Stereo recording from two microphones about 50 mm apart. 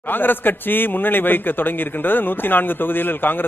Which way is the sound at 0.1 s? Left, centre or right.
Left.